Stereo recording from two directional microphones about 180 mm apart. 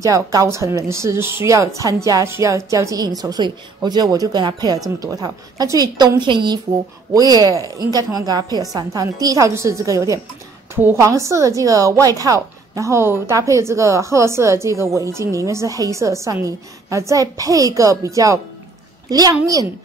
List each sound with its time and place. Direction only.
0.0 s a woman's voice: 20° right (ahead or behind)